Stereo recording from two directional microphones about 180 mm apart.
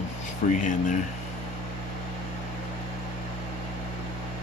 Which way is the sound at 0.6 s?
45° left (ahead or behind).